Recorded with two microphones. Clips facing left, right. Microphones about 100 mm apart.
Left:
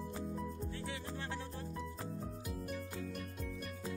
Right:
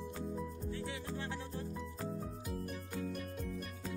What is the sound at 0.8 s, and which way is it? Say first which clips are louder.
Music: right 1 dB; 5° right (ahead or behind).